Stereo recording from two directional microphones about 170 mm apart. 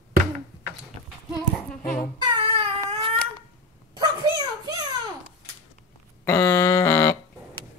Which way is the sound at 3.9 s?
25° right (ahead or behind).